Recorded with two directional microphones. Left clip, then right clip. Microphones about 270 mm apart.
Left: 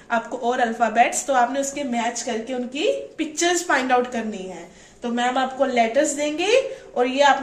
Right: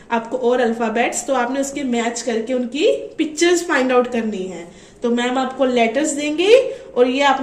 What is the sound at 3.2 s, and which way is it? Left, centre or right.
A woman's voice, centre.